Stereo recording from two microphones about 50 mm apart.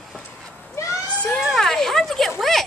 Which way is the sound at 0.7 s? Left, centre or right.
Left.